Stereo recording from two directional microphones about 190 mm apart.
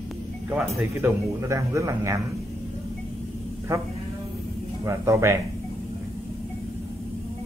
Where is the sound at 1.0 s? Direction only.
15° right (ahead or behind).